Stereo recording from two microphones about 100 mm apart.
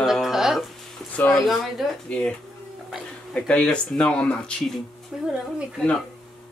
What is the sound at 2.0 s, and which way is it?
Speech, 10° left (ahead or behind).